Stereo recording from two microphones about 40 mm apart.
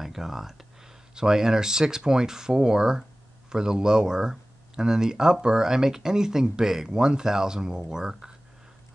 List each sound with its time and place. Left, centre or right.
0.0 s speech: centre